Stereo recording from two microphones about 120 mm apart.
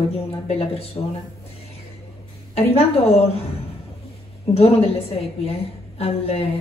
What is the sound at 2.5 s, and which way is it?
Speech, 55° left (ahead or behind).